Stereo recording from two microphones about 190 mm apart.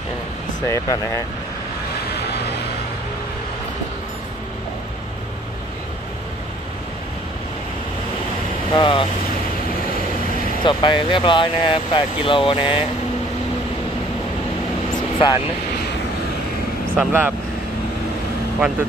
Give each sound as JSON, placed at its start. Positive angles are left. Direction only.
{"t": 0.7, "sound": "speech", "side_deg": 15}
{"t": 8.7, "sound": "speech", "side_deg": 25}
{"t": 10.6, "sound": "speech", "side_deg": 25}
{"t": 15.1, "sound": "speech", "side_deg": 25}
{"t": 16.9, "sound": "speech", "side_deg": -10}